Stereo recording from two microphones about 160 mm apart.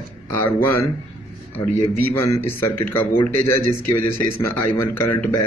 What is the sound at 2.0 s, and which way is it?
Speech, 15° left (ahead or behind).